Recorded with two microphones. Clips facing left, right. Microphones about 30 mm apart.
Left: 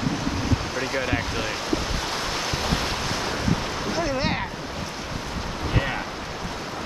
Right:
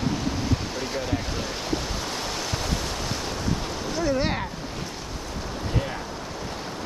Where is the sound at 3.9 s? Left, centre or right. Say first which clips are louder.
Right 1 dB; left.